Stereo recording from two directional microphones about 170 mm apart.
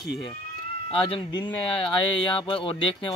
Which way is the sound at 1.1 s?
25° left (ahead or behind).